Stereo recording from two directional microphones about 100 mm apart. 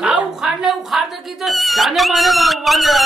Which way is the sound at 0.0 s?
10° right (ahead or behind).